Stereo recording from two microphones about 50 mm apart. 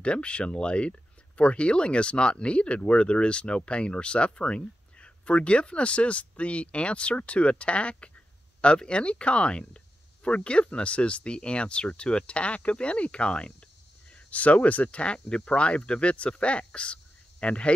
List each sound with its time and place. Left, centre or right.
0.0 s speech: left